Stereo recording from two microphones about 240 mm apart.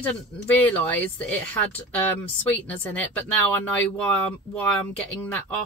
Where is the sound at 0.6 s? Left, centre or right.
Centre.